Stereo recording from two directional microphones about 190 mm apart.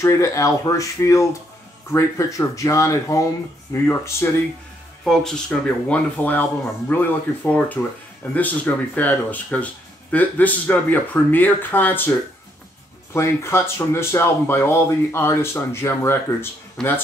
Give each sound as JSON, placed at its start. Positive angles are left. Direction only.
{"t": 0.0, "sound": "speech", "side_deg": 15}
{"t": 13.1, "sound": "speech", "side_deg": 15}